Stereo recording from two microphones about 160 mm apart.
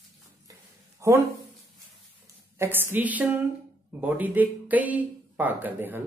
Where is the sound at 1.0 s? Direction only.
20° right (ahead or behind).